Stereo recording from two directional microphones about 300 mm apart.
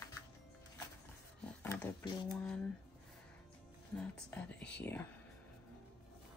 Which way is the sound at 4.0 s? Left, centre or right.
Centre.